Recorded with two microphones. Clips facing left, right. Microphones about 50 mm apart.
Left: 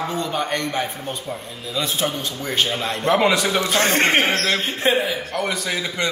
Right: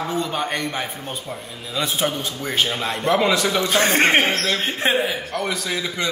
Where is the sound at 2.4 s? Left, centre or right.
Centre.